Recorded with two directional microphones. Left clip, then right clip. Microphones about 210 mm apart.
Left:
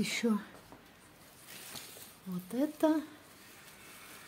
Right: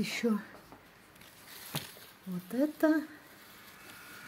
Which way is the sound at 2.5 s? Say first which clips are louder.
Right 2 dB; 5° right (ahead or behind).